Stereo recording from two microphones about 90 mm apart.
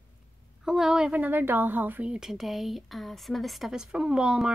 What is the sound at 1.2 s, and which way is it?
Speech, 20° right (ahead or behind).